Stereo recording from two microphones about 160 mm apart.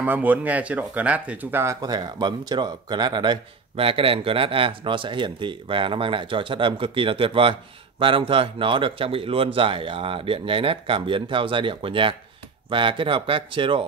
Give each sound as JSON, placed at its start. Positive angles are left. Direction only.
{"t": 0.0, "sound": "speech", "side_deg": -10}